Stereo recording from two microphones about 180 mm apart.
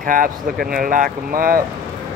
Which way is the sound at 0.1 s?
50° right (ahead or behind).